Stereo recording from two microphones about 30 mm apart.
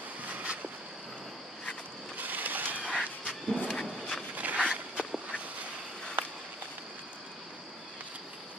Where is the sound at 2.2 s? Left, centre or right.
Right.